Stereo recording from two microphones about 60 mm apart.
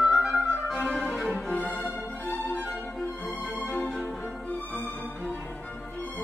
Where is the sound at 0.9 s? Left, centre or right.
Centre.